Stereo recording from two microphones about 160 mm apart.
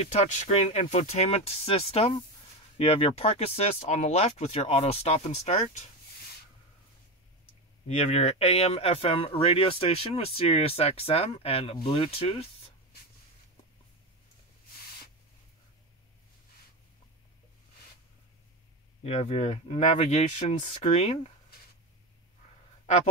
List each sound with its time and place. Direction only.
0.0 s speech: 45° left (ahead or behind)
7.9 s speech: 40° left (ahead or behind)
19.0 s speech: 40° left (ahead or behind)